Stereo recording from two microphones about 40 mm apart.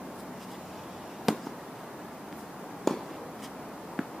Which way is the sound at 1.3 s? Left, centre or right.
Centre.